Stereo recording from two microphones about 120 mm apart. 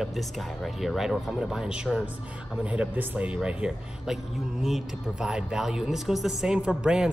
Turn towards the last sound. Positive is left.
turn(degrees=-5)  # may be behind; listen again after turning